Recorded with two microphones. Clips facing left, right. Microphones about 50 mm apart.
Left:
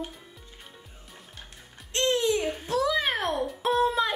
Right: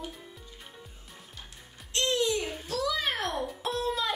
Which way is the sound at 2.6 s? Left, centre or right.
Left.